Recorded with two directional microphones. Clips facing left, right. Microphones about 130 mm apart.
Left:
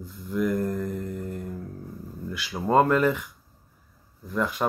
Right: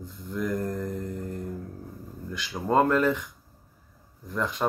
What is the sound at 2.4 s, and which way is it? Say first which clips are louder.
Speech: left 2 dB; 10° left (ahead or behind).